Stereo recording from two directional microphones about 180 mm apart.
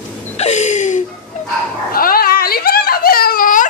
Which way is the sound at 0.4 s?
40° left (ahead or behind).